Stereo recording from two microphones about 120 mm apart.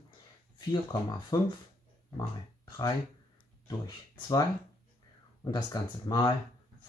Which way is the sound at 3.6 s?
35° left (ahead or behind).